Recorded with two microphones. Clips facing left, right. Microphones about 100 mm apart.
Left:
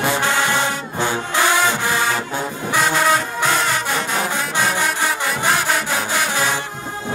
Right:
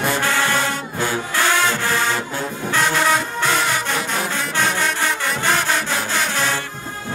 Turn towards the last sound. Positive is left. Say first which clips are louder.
# left 1 dB
turn(degrees=5)  # may be behind; listen again after turning